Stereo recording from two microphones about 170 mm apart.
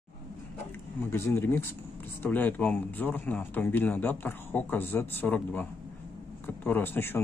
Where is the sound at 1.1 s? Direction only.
15° left (ahead or behind).